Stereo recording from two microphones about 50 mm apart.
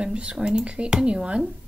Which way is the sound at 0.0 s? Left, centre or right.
Right.